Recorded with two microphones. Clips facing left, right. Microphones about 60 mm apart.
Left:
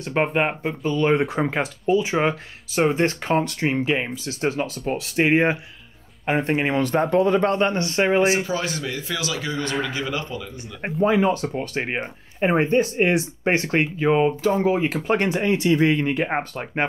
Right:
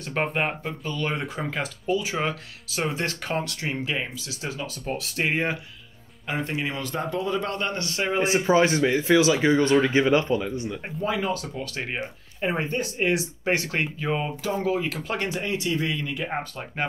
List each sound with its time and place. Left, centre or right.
0.1 s speech: centre
4.3 s speech: left
4.8 s speech: left
6.2 s speech: left
7.5 s speech: left
8.5 s speech: right
10.8 s speech: left